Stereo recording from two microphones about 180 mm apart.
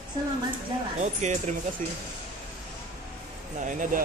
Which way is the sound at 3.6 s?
45° right (ahead or behind).